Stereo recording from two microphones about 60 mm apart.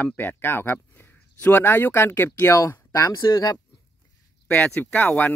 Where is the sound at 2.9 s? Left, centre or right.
Left.